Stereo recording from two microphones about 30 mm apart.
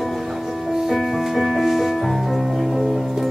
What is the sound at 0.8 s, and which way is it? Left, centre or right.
Music, centre.